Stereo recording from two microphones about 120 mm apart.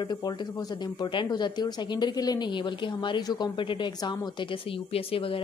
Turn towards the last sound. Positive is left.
turn(degrees=50)  # may be behind; listen again after turning